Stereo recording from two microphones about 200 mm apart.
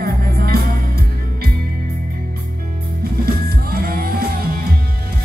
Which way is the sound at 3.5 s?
50° right (ahead or behind).